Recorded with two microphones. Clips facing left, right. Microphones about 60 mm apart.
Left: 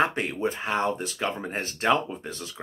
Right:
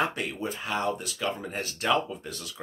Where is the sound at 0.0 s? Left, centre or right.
Left.